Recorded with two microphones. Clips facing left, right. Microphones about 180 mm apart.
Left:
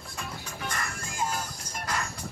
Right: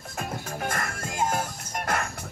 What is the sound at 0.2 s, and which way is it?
Music, 45° right (ahead or behind).